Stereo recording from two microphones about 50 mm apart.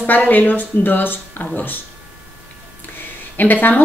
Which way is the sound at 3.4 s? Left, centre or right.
Left.